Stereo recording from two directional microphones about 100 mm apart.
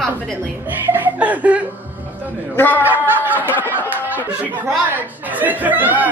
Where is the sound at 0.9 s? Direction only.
15° right (ahead or behind).